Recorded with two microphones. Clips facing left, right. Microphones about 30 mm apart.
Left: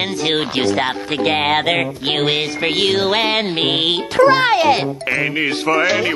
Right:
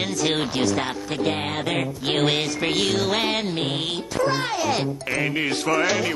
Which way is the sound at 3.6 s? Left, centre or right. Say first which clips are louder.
Left 9 dB; left.